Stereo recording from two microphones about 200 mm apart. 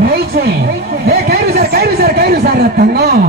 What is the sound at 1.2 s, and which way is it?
A man's voice, 50° right (ahead or behind).